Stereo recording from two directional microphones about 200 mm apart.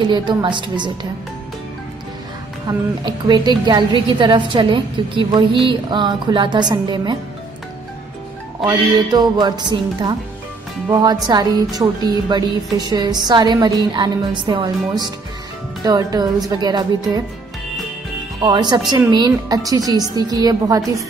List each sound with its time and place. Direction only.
0.0 s a woman's voice: 25° right (ahead or behind)
2.7 s a woman's voice: 20° right (ahead or behind)
8.6 s a woman's voice: 20° right (ahead or behind)
18.4 s a woman's voice: 20° right (ahead or behind)